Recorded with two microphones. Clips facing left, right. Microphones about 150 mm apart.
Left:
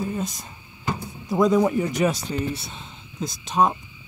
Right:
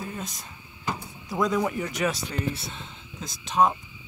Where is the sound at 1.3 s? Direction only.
20° left (ahead or behind).